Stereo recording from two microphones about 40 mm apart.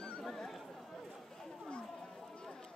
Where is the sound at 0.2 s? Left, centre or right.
Centre.